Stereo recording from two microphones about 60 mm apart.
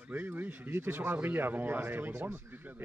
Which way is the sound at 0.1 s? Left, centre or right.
Right.